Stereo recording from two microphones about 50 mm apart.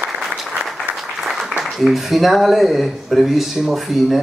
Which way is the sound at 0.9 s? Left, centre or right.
Centre.